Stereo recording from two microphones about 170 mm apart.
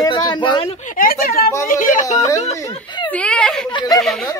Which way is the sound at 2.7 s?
25° left (ahead or behind).